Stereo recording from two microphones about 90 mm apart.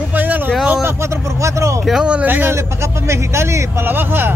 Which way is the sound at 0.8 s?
30° right (ahead or behind).